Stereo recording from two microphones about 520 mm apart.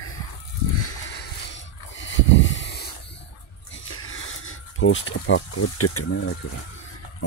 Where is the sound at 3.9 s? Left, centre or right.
Left.